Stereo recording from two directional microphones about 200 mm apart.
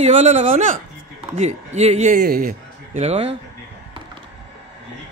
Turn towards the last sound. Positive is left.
turn(degrees=-30)  # may be behind; listen again after turning